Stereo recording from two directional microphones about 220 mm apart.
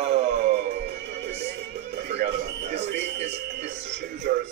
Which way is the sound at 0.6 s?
50° right (ahead or behind).